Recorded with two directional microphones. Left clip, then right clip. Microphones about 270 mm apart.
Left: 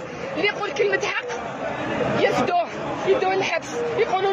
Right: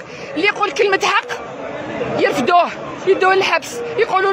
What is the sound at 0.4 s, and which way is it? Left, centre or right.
Speech, right.